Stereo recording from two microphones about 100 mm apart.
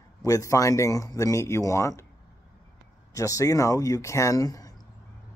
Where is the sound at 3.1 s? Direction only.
35° left (ahead or behind).